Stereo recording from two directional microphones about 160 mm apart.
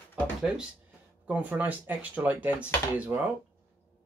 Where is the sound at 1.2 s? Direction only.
10° right (ahead or behind).